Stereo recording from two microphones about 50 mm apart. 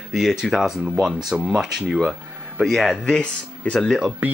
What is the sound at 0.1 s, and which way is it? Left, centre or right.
Speech, centre.